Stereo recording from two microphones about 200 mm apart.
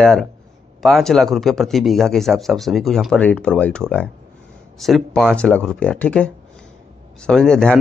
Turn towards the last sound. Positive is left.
turn(degrees=5)  # may be behind; listen again after turning